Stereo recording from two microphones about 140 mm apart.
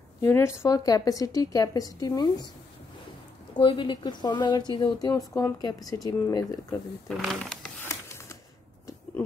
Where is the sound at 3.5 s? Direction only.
40° left (ahead or behind).